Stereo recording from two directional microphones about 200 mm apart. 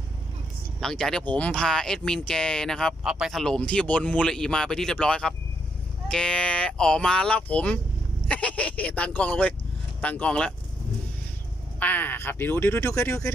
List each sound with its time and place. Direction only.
0.7 s speech: centre (ahead or behind)
11.8 s speech: 10° left (ahead or behind)